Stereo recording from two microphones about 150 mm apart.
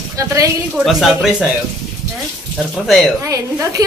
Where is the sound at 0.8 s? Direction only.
Centre (ahead or behind).